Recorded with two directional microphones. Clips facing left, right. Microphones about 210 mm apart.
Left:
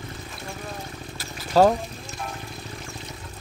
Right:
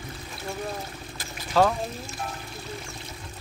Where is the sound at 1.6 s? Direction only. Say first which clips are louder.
Left 4 dB; 40° left (ahead or behind).